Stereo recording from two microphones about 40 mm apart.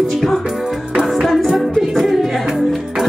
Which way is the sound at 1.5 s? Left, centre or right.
Centre.